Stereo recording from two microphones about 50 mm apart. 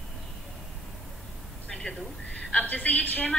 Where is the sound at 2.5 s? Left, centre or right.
Left.